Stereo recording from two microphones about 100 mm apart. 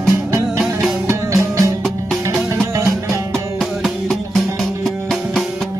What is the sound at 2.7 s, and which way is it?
Music, 30° right (ahead or behind).